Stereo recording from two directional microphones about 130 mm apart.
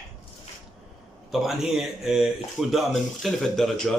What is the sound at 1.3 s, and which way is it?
Speech, centre (ahead or behind).